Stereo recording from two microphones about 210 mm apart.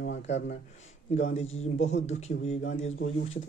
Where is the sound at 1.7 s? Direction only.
65° left (ahead or behind).